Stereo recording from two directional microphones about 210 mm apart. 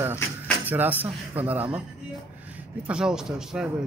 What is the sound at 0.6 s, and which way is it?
Speech, 10° right (ahead or behind).